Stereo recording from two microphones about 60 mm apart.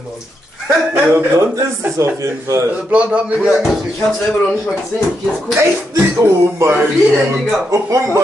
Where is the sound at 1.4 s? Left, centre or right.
Right.